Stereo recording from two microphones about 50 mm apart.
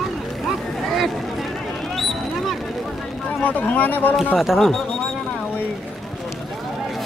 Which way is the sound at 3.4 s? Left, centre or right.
Left.